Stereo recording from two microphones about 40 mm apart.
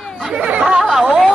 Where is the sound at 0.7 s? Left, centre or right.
Centre.